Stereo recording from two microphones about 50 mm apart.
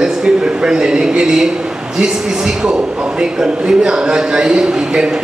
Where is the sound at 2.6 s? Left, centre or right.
Centre.